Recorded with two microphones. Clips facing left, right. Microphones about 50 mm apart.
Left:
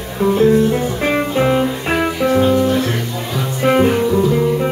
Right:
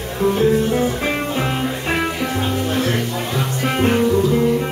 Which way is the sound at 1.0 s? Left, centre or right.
Centre.